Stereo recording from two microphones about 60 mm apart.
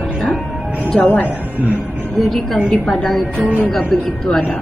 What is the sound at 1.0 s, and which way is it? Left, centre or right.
Speech, left.